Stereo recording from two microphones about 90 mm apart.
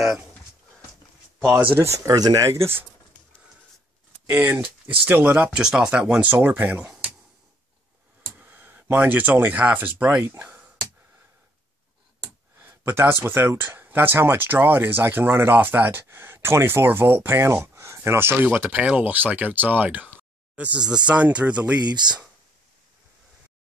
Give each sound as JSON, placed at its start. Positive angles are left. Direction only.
{"t": 1.8, "sound": "speech", "side_deg": -35}
{"t": 4.3, "sound": "speech", "side_deg": -20}
{"t": 6.3, "sound": "speech", "side_deg": -20}
{"t": 8.4, "sound": "speech", "side_deg": -20}
{"t": 12.5, "sound": "speech", "side_deg": -25}
{"t": 21.8, "sound": "speech", "side_deg": -55}